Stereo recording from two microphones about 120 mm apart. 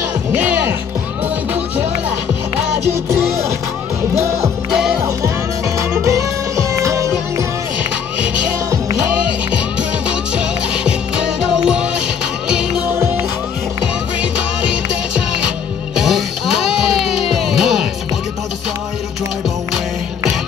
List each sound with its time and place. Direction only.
0.3 s speech: 15° right (ahead or behind)
1.5 s music: 15° right (ahead or behind)
5.8 s music: 25° right (ahead or behind)
9.8 s music: 10° right (ahead or behind)
12.9 s music: 20° right (ahead or behind)
16.0 s music: 5° right (ahead or behind)